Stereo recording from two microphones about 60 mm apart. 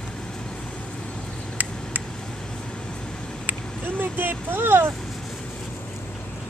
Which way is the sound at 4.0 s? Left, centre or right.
Right.